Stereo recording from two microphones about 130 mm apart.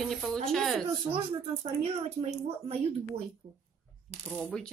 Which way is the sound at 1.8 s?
50° right (ahead or behind).